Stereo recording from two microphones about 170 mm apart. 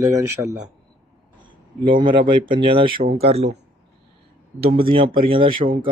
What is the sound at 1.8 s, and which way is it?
Speech, 30° right (ahead or behind).